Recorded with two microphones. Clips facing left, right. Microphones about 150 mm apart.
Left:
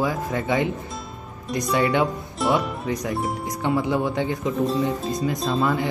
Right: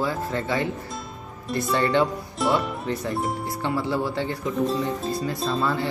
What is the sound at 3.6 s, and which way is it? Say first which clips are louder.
Speech: left 3 dB; 15° left (ahead or behind).